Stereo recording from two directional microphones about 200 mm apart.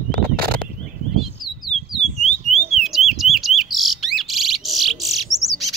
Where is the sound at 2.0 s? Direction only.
30° left (ahead or behind).